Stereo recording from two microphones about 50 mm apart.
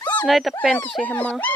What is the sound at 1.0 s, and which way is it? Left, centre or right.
Speech, left.